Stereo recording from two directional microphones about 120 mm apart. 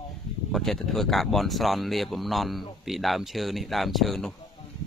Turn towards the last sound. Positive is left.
turn(degrees=0)  # may be behind; listen again after turning